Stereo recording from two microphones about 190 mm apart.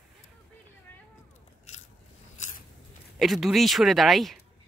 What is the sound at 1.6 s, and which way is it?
Biting, 35° left (ahead or behind).